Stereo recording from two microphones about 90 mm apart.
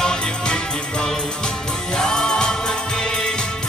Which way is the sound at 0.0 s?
10° left (ahead or behind).